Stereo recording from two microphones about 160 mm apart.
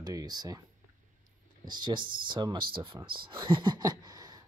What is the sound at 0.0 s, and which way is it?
Speech, 25° right (ahead or behind).